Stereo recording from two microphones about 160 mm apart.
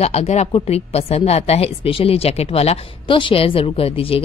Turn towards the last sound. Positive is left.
turn(degrees=35)  # may be behind; listen again after turning